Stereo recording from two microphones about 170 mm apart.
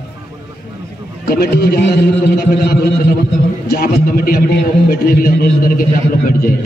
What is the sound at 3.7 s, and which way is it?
A man's voice, 60° left (ahead or behind).